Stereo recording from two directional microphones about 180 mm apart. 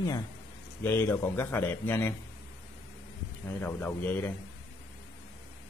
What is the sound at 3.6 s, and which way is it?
Speech, 10° left (ahead or behind).